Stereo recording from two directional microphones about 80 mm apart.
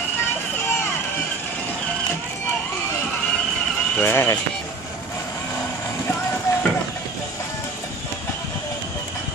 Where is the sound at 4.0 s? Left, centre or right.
Left.